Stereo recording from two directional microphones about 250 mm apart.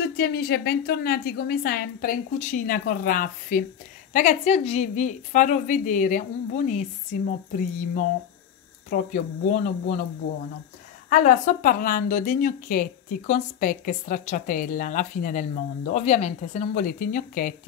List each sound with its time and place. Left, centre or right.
0.2 s a woman's voice: left
8.9 s a woman's voice: left
11.1 s a woman's voice: left